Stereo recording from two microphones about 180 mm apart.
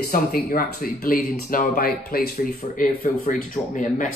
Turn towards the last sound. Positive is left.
turn(degrees=45)  # may be behind; listen again after turning